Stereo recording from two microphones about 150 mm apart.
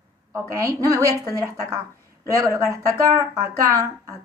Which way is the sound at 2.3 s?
20° right (ahead or behind).